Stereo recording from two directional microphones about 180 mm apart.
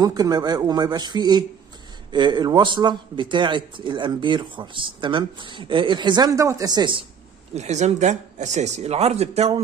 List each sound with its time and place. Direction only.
0.0 s a man's voice: 20° right (ahead or behind)
7.5 s speech: 40° right (ahead or behind)